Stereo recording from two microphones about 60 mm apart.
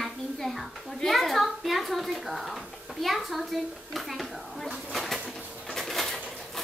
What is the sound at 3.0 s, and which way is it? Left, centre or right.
Speech, centre.